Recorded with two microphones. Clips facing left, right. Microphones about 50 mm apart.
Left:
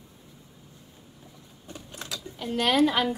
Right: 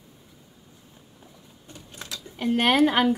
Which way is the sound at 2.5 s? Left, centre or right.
Right.